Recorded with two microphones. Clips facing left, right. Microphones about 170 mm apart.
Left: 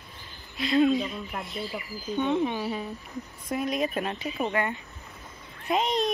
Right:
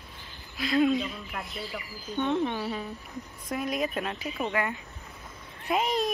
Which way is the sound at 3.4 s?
Centre (ahead or behind).